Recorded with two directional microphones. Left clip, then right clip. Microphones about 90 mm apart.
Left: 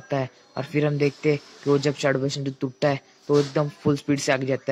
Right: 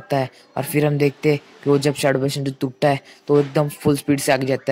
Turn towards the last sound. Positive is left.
turn(degrees=-40)  # may be behind; listen again after turning